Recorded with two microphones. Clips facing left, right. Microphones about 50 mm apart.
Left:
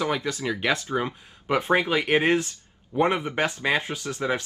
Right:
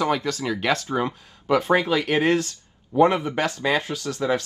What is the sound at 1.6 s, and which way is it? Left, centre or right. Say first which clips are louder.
Speech: left 1 dB; left.